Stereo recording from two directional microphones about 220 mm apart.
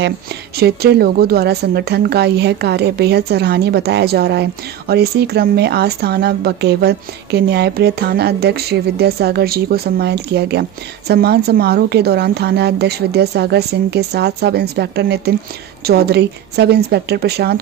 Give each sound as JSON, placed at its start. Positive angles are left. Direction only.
{"t": 0.6, "sound": "a woman's voice", "side_deg": -45}